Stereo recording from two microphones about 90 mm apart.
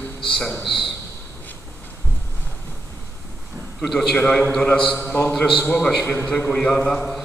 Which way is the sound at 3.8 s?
5° left (ahead or behind).